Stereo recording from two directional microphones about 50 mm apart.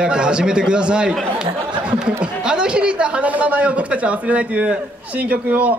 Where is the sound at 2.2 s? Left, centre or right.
Centre.